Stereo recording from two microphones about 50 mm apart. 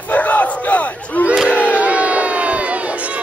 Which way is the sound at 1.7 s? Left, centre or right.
Right.